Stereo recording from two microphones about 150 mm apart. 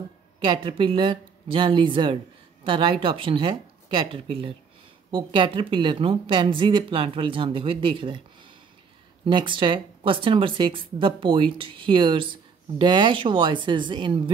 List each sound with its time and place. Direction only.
0.4 s speech: 35° right (ahead or behind)
9.2 s speech: 35° right (ahead or behind)